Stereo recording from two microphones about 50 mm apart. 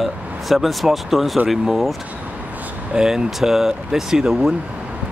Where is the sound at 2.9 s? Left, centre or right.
Centre.